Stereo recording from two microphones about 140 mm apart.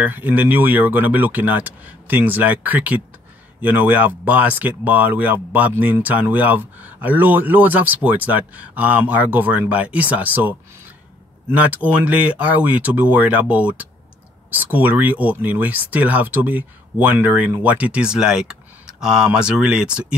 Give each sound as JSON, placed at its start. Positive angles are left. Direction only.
{"t": 0.0, "sound": "speech", "side_deg": -10}
{"t": 11.5, "sound": "speech", "side_deg": -10}